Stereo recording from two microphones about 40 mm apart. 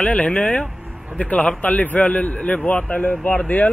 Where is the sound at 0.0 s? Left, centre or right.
Left.